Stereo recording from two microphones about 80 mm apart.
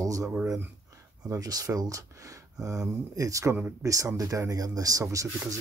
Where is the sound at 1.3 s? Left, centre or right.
Right.